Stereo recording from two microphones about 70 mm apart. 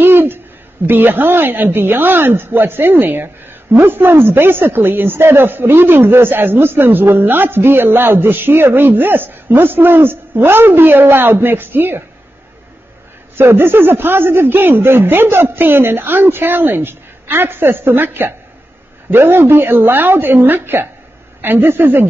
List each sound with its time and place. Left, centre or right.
0.0 s hoot: right
0.8 s speech: right
13.4 s speech: right